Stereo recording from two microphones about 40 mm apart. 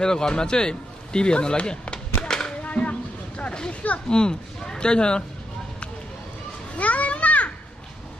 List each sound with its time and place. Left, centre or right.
0.0 s speech: centre
2.6 s a sound: left
4.1 s a man's voice: left
6.7 s children playing: left